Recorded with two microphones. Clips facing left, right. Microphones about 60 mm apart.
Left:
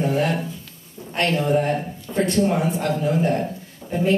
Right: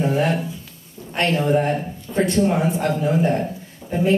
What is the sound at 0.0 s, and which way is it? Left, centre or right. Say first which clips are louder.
A man's voice: right 1 dB; right.